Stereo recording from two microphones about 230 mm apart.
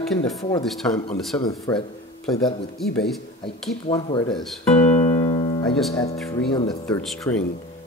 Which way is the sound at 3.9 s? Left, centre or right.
Centre.